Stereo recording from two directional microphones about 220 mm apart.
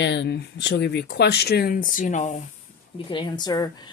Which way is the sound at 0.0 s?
50° left (ahead or behind).